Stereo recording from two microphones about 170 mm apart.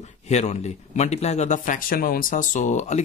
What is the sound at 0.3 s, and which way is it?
Speech, 40° left (ahead or behind).